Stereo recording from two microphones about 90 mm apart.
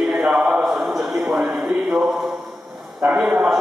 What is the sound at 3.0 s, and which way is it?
Speech, 5° right (ahead or behind).